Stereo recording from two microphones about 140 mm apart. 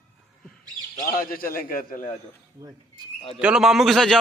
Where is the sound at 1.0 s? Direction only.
90° left.